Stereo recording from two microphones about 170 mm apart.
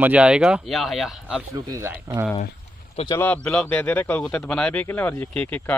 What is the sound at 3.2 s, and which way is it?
Speech, 5° left (ahead or behind).